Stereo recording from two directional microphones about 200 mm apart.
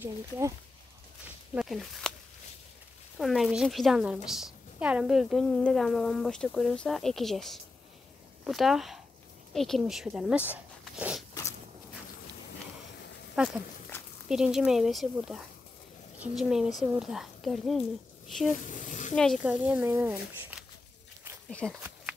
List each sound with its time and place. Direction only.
1.5 s speech: centre (ahead or behind)
3.2 s a woman's voice: centre (ahead or behind)
13.4 s a woman's voice: 5° right (ahead or behind)
13.9 s a sound: 10° left (ahead or behind)
14.3 s a woman's voice: 5° right (ahead or behind)
18.6 s speech: 40° left (ahead or behind)
19.1 s speech: centre (ahead or behind)
21.5 s speech: 5° left (ahead or behind)